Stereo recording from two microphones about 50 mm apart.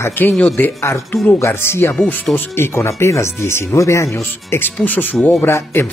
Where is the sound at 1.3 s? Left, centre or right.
Left.